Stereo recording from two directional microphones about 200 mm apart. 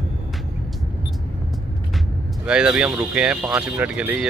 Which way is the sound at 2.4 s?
5° right (ahead or behind).